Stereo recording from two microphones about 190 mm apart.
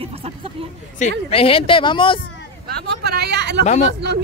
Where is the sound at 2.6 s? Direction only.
55° right (ahead or behind).